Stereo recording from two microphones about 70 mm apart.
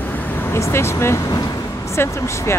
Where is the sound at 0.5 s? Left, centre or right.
Left.